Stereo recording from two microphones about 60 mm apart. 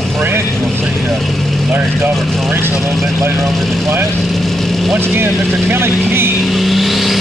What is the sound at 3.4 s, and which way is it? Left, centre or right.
Speech, centre.